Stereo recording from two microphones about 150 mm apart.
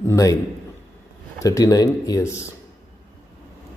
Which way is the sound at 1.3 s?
20° left (ahead or behind).